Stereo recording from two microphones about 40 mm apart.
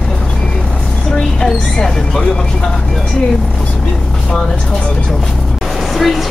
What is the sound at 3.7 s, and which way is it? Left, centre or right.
Vehicle, centre.